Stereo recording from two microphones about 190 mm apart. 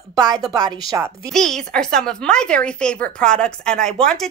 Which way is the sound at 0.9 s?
15° right (ahead or behind).